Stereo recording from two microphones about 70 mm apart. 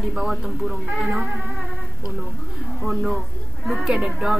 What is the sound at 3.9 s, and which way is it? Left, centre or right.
Speech, centre.